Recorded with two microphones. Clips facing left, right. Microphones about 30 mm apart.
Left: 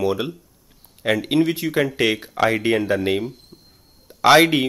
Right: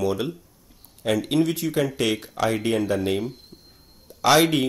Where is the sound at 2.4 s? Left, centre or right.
Left.